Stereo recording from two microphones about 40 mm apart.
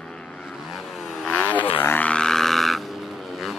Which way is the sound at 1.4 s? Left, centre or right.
Left.